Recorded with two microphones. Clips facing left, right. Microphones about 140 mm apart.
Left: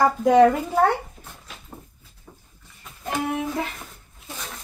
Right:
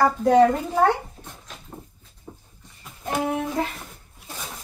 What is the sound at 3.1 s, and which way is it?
Speech, centre (ahead or behind).